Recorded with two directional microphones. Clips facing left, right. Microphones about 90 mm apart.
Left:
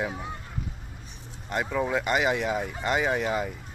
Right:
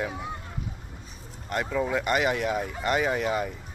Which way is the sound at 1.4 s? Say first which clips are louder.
Even; 20° left (ahead or behind).